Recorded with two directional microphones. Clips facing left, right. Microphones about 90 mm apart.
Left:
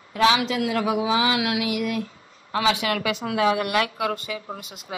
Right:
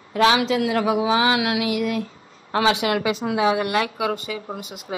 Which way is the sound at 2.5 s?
50° right (ahead or behind).